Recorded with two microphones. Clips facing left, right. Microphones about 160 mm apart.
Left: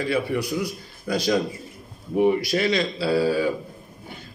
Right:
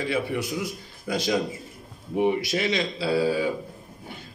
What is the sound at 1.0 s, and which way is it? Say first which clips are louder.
A man's voice: left 3 dB; 20° right (ahead or behind).